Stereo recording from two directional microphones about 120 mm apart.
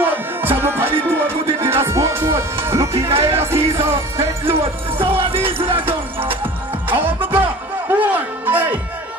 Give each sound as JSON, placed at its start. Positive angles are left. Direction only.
{"t": 0.0, "sound": "music", "side_deg": -15}
{"t": 4.9, "sound": "music", "side_deg": -50}
{"t": 5.8, "sound": "music", "side_deg": -15}